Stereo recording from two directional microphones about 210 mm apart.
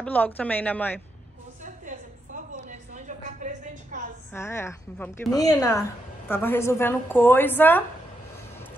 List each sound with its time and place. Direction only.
0.0 s a woman's voice: 10° left (ahead or behind)
1.6 s a sound: 35° right (ahead or behind)
4.3 s a woman's voice: 10° left (ahead or behind)